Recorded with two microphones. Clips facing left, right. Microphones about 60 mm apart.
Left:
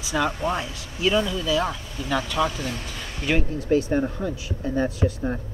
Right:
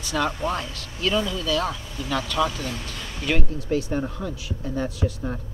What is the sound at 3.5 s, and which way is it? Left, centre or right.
Speech, left.